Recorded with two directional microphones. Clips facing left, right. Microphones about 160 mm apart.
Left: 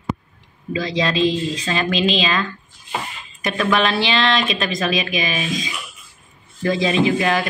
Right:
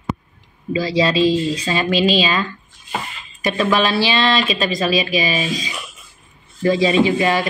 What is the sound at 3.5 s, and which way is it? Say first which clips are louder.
Speech: right 2 dB; centre (ahead or behind).